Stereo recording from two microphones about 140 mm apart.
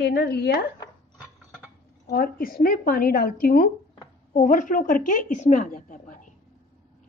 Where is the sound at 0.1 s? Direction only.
90° left.